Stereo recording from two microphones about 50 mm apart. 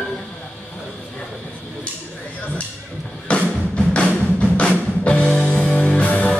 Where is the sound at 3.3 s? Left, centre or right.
Left.